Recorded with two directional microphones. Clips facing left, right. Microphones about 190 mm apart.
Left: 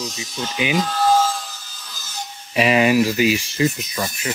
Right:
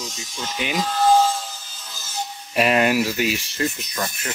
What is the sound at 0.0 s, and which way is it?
Speech, 5° left (ahead or behind).